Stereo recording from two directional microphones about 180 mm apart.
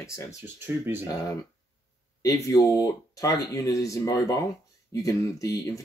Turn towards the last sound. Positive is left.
turn(degrees=20)  # may be behind; listen again after turning